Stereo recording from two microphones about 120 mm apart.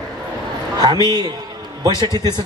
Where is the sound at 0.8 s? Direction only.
35° right (ahead or behind).